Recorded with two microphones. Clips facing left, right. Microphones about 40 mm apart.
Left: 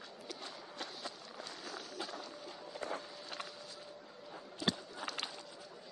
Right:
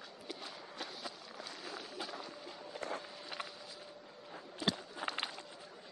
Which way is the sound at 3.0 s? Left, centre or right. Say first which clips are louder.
Right 1 dB; centre.